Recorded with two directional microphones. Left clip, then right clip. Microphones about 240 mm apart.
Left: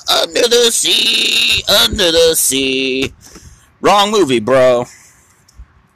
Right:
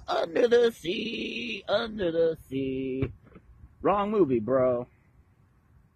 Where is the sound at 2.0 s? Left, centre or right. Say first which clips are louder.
Left 16 dB; centre.